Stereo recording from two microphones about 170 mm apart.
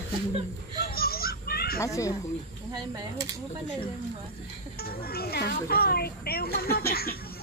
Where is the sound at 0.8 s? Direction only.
60° left (ahead or behind).